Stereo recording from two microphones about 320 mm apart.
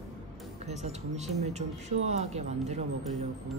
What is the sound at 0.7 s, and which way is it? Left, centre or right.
Speech, right.